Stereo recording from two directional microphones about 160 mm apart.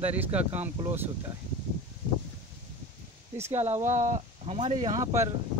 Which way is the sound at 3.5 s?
45° right (ahead or behind).